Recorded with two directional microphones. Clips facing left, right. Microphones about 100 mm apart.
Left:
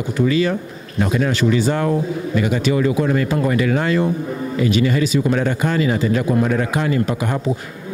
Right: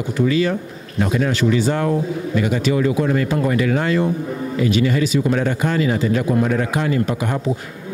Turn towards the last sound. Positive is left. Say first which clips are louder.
# even
turn(degrees=20)  # may be behind; listen again after turning